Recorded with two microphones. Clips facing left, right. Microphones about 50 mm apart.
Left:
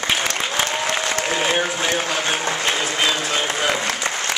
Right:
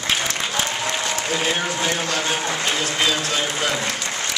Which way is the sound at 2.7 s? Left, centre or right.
Centre.